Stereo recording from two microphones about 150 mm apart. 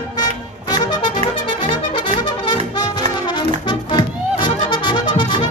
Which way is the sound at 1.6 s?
30° left (ahead or behind).